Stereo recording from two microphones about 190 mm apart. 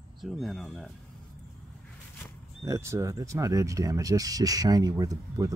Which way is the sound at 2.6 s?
15° right (ahead or behind).